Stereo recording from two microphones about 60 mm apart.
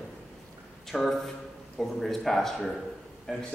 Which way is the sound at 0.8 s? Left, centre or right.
Centre.